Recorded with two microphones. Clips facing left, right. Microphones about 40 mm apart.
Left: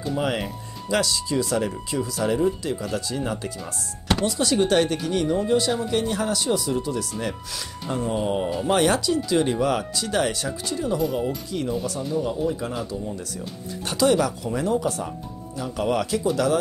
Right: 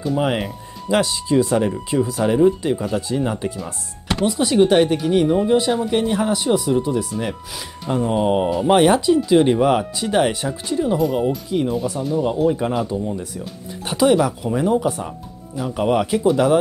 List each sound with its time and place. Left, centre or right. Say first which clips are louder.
0.4 s speech: right 4 dB; right
2.8 s speech: right 6 dB; right
13.8 s speech: right 4 dB; right